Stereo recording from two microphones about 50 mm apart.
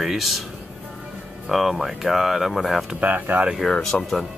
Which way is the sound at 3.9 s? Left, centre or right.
Left.